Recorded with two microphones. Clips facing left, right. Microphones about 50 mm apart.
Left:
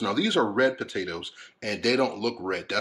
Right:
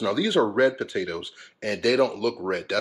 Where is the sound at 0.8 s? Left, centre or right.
Right.